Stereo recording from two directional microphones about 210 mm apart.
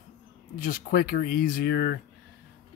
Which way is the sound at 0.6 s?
40° left (ahead or behind).